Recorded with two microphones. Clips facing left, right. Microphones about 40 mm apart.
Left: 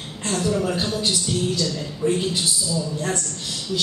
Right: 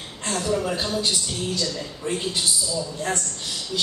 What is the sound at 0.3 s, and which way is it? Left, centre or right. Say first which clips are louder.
A man's voice: left 2 dB; centre.